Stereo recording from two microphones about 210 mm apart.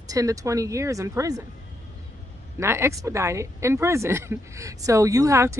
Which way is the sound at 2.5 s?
10° right (ahead or behind).